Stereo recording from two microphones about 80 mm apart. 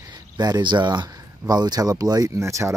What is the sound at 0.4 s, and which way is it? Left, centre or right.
Speech, right.